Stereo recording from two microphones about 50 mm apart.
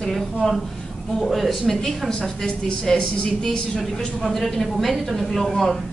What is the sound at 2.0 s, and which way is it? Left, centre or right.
A woman's voice, centre.